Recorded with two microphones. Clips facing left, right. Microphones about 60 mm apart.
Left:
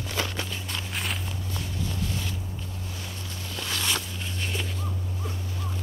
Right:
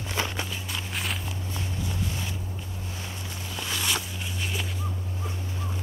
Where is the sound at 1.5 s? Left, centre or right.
Right.